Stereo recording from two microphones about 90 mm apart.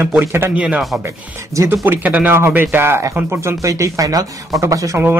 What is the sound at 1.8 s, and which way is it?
A man's voice, 20° right (ahead or behind).